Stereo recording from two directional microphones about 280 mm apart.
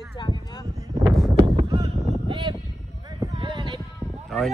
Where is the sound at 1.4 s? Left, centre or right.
Centre.